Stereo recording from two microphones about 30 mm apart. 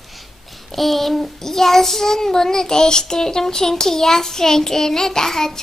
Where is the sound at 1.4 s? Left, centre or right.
Centre.